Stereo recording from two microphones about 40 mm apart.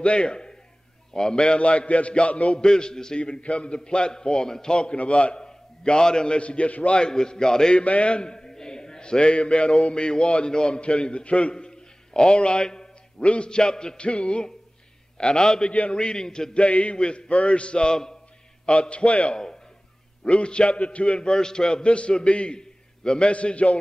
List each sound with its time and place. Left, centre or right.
0.0 s a man's voice: left
2.6 s a man's voice: centre
3.2 s a man's voice: left
4.9 s a man's voice: left
7.0 s a man's voice: centre
7.7 s a man's voice: left
11.5 s a man's voice: centre
15.7 s a man's voice: left
16.0 s a man's voice: centre
18.7 s a man's voice: left